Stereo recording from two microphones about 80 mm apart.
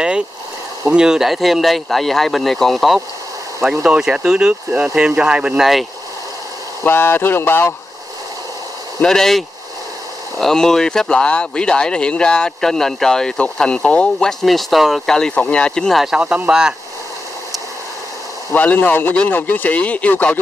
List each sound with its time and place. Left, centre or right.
0.8 s speech: centre
6.8 s speech: left
9.0 s speech: centre
10.4 s speech: centre
14.4 s speech: centre
16.0 s speech: centre
18.5 s speech: centre